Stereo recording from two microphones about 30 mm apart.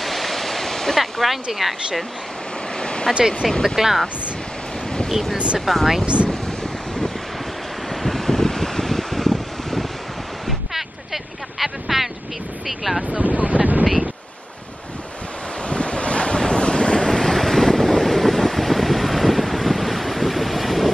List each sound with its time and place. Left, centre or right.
0.0 s waterfall: centre
1.2 s speech: centre
2.8 s a sound: left
3.6 s speech: centre
5.7 s speech: centre
6.0 s speech: right
7.9 s wind: centre
11.6 s a sound: centre
12.6 s speech: centre
13.2 s wind noise: right
15.7 s waves: left
17.1 s wind noise: centre
18.0 s vehicle: centre